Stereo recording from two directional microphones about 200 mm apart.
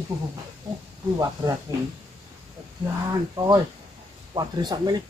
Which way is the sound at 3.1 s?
20° right (ahead or behind).